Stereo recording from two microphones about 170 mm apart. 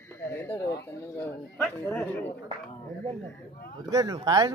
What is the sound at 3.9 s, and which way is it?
Speech, 20° right (ahead or behind).